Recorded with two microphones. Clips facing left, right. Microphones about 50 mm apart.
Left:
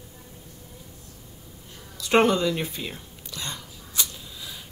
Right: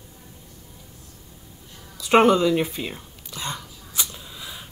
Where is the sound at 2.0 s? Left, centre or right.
Centre.